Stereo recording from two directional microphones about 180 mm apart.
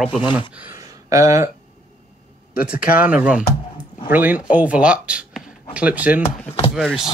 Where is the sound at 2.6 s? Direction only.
5° right (ahead or behind).